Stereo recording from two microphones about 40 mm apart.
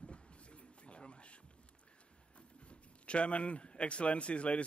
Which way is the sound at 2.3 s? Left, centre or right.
Left.